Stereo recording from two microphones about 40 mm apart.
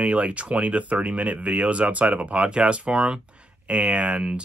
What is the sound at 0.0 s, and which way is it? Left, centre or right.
Speech, right.